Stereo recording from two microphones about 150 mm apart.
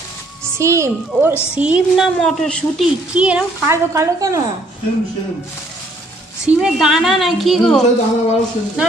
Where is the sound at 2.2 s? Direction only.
5° left (ahead or behind).